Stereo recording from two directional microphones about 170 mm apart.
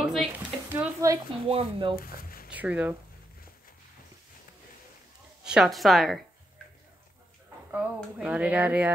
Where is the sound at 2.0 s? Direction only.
60° left (ahead or behind).